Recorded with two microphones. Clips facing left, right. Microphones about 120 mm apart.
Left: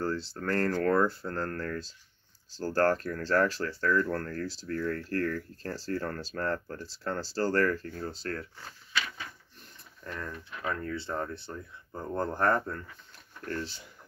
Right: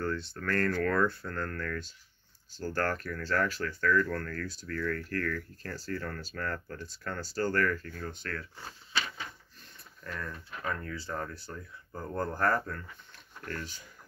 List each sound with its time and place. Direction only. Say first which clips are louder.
0.0 s speech: left 2 dB; 30° left (ahead or behind)
10.1 s speech: left 1 dB; 30° left (ahead or behind)